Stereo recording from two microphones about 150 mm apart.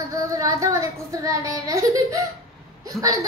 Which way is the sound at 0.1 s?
20° right (ahead or behind).